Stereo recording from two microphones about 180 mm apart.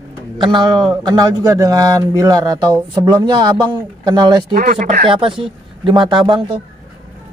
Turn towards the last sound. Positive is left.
turn(degrees=-25)  # may be behind; listen again after turning